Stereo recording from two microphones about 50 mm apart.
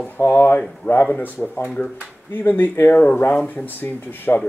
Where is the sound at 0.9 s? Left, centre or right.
Left.